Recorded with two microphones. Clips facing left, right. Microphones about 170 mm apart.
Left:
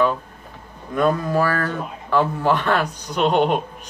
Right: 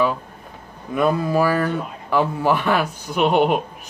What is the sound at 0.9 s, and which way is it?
Speech, 10° right (ahead or behind).